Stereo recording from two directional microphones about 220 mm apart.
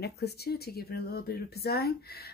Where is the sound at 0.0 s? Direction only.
45° left (ahead or behind).